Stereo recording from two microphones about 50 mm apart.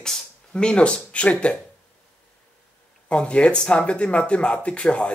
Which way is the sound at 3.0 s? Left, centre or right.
Left.